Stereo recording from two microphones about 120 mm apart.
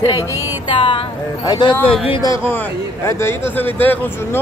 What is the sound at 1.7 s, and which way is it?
Speech, 15° left (ahead or behind).